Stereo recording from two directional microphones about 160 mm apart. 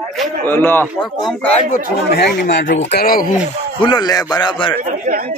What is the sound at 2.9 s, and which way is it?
Speech, 70° left (ahead or behind).